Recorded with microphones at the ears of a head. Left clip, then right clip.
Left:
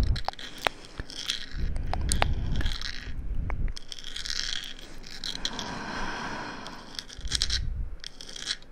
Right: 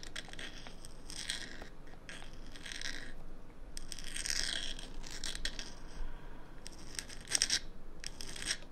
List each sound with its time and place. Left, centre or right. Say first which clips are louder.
0.0 s biting: left 11 dB; left
5.1 s scrape: left 9 dB; left
8.0 s filing: left 6 dB; left